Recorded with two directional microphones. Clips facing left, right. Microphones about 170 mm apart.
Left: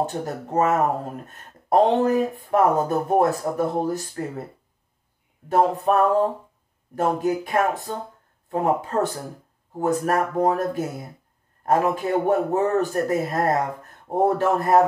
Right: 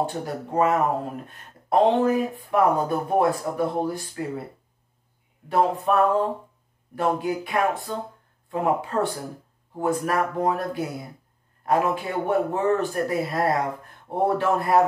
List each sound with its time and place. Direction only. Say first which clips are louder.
0.0 s music: left 1 dB; 45° left (ahead or behind)
1.2 s speech: left 1 dB; 40° left (ahead or behind)
3.5 s music: left 2 dB; 45° left (ahead or behind)
5.5 s speech: left 2 dB; 40° left (ahead or behind)
7.0 s music: left 2 dB; 45° left (ahead or behind)
9.8 s speech: left 2 dB; 40° left (ahead or behind)
14.0 s music: left 2 dB; 45° left (ahead or behind)